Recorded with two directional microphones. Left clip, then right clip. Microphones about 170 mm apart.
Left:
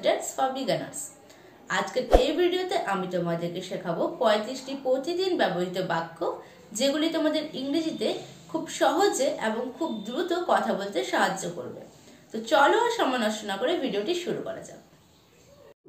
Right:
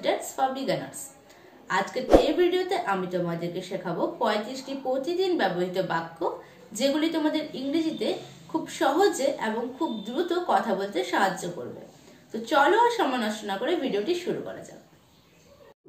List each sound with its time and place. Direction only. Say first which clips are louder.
0.0 s a woman's voice: left 1 dB; 5° left (ahead or behind)